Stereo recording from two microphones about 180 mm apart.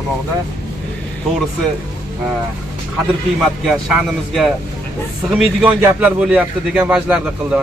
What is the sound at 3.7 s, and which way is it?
A man's voice, 5° right (ahead or behind).